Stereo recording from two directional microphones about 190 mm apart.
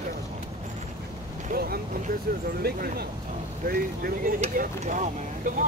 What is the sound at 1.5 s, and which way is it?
Speech, 50° right (ahead or behind).